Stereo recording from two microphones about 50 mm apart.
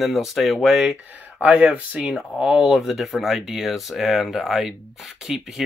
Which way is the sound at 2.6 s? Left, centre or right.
Centre.